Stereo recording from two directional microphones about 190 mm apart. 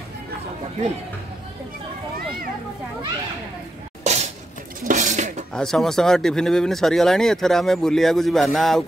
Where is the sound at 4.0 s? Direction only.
35° right (ahead or behind).